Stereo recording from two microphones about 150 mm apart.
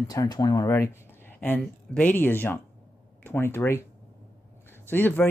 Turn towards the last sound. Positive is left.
turn(degrees=15)  # may be behind; listen again after turning